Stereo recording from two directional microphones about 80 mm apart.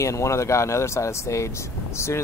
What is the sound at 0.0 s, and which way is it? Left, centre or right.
Speech, left.